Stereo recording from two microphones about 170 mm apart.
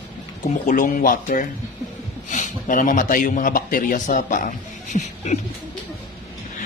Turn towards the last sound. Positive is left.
turn(degrees=45)  # may be behind; listen again after turning